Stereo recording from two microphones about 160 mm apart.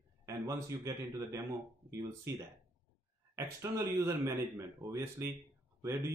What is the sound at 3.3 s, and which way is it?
Speech, 20° right (ahead or behind).